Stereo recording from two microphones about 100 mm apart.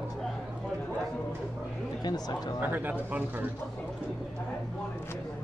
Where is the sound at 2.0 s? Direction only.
40° left (ahead or behind).